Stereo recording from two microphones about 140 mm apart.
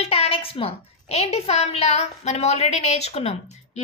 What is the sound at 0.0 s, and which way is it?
A woman's voice, 45° left (ahead or behind).